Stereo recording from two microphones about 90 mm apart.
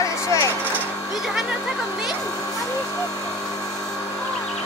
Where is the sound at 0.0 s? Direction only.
35° left (ahead or behind).